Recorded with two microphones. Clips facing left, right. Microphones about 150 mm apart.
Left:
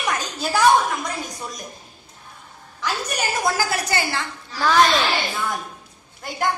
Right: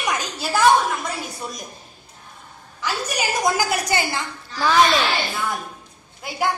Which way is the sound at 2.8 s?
5° right (ahead or behind).